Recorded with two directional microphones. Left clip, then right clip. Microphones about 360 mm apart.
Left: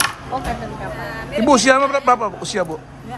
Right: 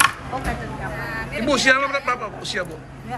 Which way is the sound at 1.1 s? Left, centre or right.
Centre.